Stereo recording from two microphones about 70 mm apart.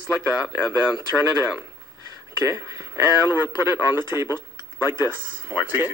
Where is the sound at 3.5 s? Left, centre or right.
Left.